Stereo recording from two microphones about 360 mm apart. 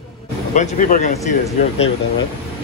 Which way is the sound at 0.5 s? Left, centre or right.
Centre.